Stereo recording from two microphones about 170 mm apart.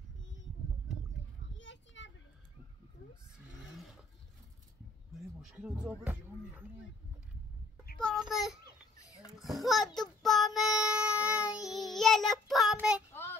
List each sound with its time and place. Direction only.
1.6 s children playing: 90° left
5.4 s speech: 5° right (ahead or behind)
8.0 s child singing: centre (ahead or behind)
8.9 s a sound: 20° left (ahead or behind)
9.4 s child singing: centre (ahead or behind)
13.1 s child singing: 15° left (ahead or behind)